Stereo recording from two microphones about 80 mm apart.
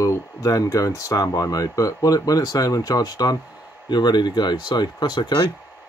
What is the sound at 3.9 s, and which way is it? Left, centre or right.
Speech, left.